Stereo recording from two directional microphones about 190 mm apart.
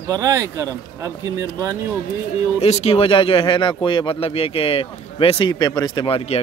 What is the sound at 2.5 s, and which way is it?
A man's voice, 35° left (ahead or behind).